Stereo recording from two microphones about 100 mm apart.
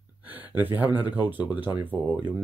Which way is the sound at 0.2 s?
20° right (ahead or behind).